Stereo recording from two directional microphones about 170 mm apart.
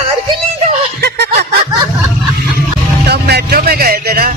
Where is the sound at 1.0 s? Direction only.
75° right (ahead or behind).